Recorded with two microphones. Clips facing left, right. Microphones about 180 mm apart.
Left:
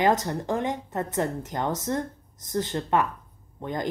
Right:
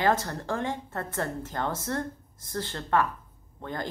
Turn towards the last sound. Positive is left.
turn(degrees=15)  # may be behind; listen again after turning